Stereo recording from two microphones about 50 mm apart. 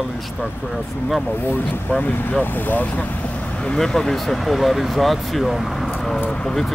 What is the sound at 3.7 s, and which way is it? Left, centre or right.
Speech, centre.